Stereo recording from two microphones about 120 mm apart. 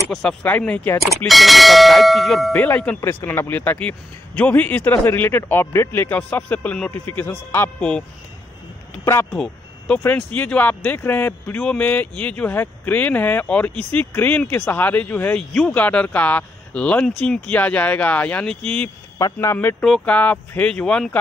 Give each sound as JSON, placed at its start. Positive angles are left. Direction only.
{"t": 0.1, "sound": "speech", "side_deg": 5}
{"t": 1.0, "sound": "clang", "side_deg": 0}
{"t": 2.5, "sound": "speech", "side_deg": 10}
{"t": 3.0, "sound": "speech", "side_deg": 25}
{"t": 9.0, "sound": "speech", "side_deg": 20}
{"t": 9.3, "sound": "a sound", "side_deg": 5}
{"t": 10.1, "sound": "speech", "side_deg": 10}
{"t": 19.1, "sound": "speech", "side_deg": 25}
{"t": 19.8, "sound": "speech", "side_deg": 10}